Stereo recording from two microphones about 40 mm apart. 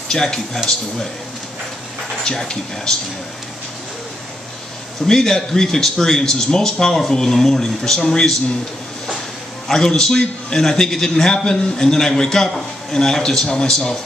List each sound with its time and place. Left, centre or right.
0.1 s speech: centre
2.2 s speech: centre
5.0 s speech: centre
9.7 s speech: centre